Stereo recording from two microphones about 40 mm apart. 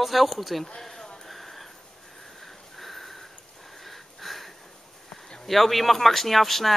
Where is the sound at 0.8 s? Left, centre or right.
Centre.